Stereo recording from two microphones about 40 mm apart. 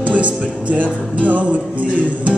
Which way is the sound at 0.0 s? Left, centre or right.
Right.